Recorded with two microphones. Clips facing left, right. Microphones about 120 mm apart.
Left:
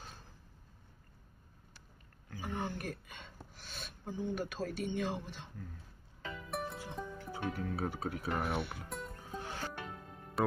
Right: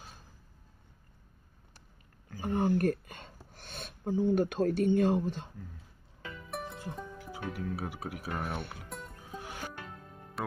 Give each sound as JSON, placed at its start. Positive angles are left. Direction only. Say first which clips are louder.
{"t": 2.4, "sound": "speech", "louder": "right 11 dB", "side_deg": -50}
{"t": 6.5, "sound": "speech", "louder": "right 1 dB", "side_deg": 5}
{"t": 8.3, "sound": "speech", "louder": "left 1 dB", "side_deg": 5}
{"t": 9.4, "sound": "music", "louder": "even", "side_deg": -15}